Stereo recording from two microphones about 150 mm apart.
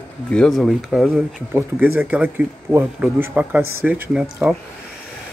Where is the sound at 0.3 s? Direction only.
5° left (ahead or behind).